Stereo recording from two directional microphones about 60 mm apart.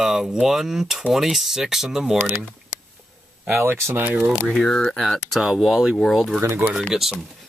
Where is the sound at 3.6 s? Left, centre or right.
Right.